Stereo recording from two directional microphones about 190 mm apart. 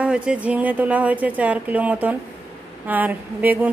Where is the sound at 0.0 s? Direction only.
5° right (ahead or behind).